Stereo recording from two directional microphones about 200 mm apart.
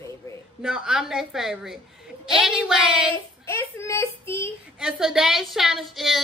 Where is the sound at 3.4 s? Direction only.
15° left (ahead or behind).